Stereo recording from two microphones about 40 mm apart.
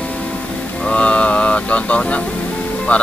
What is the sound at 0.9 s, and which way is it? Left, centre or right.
Speech, left.